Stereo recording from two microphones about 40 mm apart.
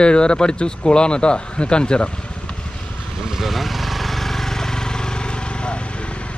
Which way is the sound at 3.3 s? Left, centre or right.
Centre.